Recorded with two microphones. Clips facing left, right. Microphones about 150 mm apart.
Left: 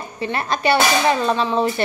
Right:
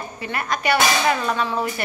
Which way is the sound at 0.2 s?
30° left (ahead or behind).